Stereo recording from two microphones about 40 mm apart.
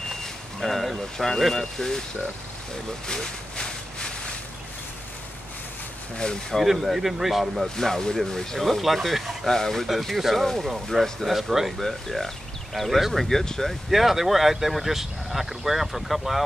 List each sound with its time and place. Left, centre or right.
0.2 s speech: centre
3.1 s a sound: centre
6.6 s speech: centre
7.6 s speech: centre
8.5 s speech: centre
9.5 s speech: centre
11.8 s speech: centre
13.8 s speech: centre